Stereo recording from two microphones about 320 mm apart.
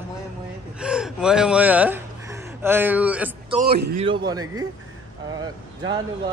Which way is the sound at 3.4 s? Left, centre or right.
Right.